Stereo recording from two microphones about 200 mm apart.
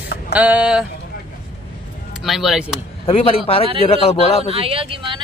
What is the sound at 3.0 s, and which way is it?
A man's voice, 30° left (ahead or behind).